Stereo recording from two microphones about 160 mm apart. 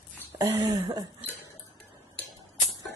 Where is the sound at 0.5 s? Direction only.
20° right (ahead or behind).